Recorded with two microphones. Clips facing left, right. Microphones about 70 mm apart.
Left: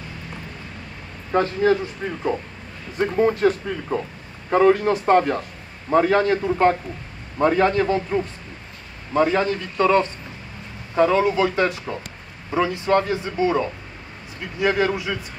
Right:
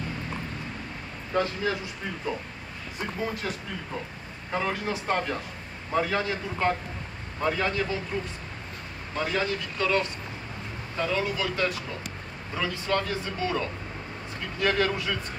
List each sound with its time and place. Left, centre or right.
1.3 s speech: left
3.0 s speech: left
9.1 s speech: left
11.2 s a man's voice: left